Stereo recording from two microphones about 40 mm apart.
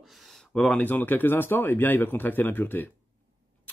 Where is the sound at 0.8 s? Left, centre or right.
Left.